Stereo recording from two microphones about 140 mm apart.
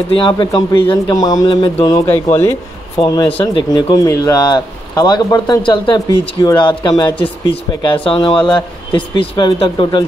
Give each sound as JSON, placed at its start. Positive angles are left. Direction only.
{"t": 0.2, "sound": "a man's voice", "side_deg": 35}